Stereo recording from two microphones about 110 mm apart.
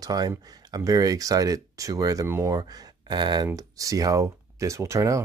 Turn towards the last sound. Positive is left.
turn(degrees=-25)  # may be behind; listen again after turning